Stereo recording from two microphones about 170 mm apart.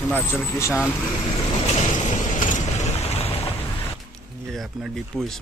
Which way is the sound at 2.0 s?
45° left (ahead or behind).